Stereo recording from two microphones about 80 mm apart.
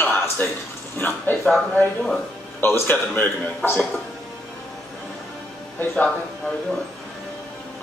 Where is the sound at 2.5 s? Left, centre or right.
Left.